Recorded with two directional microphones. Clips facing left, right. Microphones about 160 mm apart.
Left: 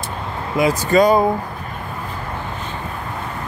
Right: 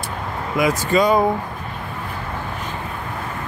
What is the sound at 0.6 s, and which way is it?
Speech, 25° left (ahead or behind).